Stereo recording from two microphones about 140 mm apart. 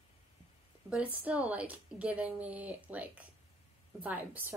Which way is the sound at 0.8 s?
10° right (ahead or behind).